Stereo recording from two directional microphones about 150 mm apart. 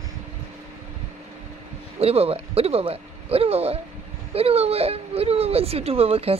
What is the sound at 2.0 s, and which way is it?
Speech, 40° right (ahead or behind).